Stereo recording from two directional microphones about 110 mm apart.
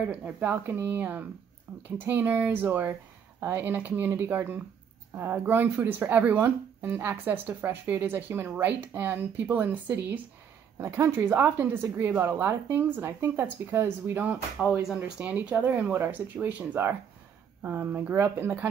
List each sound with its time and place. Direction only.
0.1 s speech: 10° right (ahead or behind)
2.0 s speech: 15° right (ahead or behind)